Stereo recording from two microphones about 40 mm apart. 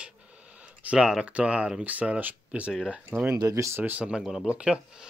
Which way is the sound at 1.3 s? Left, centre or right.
Right.